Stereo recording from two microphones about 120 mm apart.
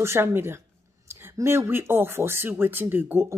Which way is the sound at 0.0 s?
20° right (ahead or behind).